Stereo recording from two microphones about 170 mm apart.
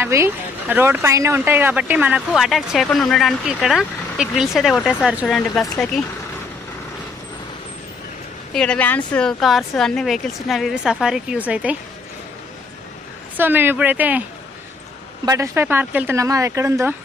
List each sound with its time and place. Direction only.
0.0 s speech: 15° right (ahead or behind); by 6.0 s centre (ahead or behind)
8.5 s speech: 5° left (ahead or behind)
13.4 s speech: 10° right (ahead or behind)
15.2 s speech: 20° right (ahead or behind)